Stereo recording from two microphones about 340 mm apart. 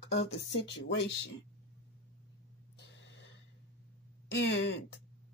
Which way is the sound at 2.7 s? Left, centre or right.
Left.